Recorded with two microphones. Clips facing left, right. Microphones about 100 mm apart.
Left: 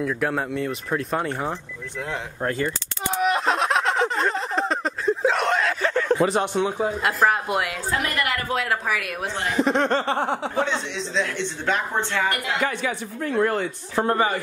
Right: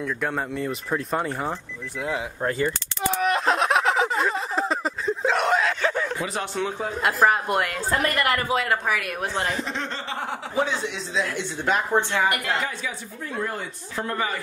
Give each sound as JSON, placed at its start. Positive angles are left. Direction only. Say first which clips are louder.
{"t": 0.0, "sound": "speech", "louder": "left 3 dB", "side_deg": 5}
{"t": 3.1, "sound": "a sound", "louder": "left 1 dB", "side_deg": 5}
{"t": 6.3, "sound": "speech", "louder": "left 5 dB", "side_deg": 20}
{"t": 6.8, "sound": "speech", "louder": "right 3 dB", "side_deg": 0}
{"t": 8.0, "sound": "a woman's voice", "louder": "right 4 dB", "side_deg": -40}
{"t": 8.5, "sound": "speech", "louder": "right 1 dB", "side_deg": 0}
{"t": 9.6, "sound": "speech", "louder": "left 10 dB", "side_deg": 55}
{"t": 10.1, "sound": "speech", "louder": "left 6 dB", "side_deg": 30}
{"t": 10.5, "sound": "speech", "louder": "even", "side_deg": -5}
{"t": 12.6, "sound": "speech", "louder": "left 6 dB", "side_deg": 65}
{"t": 13.9, "sound": "speech", "louder": "left 6 dB", "side_deg": 40}